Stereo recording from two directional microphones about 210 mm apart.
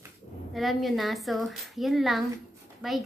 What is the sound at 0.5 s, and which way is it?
A woman's voice, centre (ahead or behind).